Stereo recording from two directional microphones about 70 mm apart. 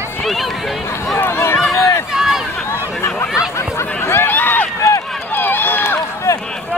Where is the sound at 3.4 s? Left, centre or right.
Left.